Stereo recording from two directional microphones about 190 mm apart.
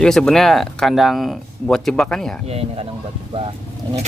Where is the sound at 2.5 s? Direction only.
30° right (ahead or behind).